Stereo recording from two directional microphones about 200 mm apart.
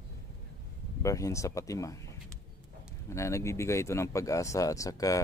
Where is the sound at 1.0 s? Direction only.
15° left (ahead or behind).